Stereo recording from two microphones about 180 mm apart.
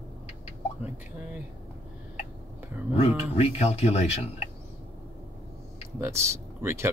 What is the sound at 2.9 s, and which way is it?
Speech, 35° left (ahead or behind).